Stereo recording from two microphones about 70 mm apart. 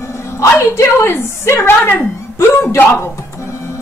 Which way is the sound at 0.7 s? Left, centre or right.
Left.